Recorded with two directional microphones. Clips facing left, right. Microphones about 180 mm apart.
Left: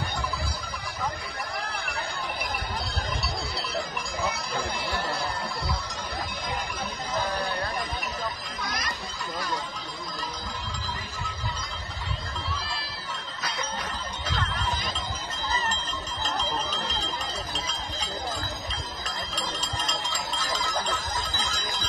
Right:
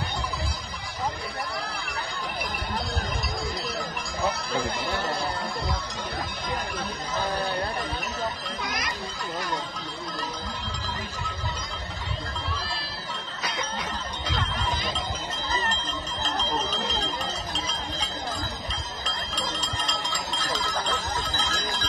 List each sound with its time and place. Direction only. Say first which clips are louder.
1.5 s music: even; 50° left (ahead or behind)
3.5 s a sound: even; 45° right (ahead or behind)
8.6 s a child's voice: even; 15° right (ahead or behind)
15.6 s bicycle bell: right 1 dB; 10° left (ahead or behind)
19.0 s bicycle bell: right 1 dB; 10° left (ahead or behind)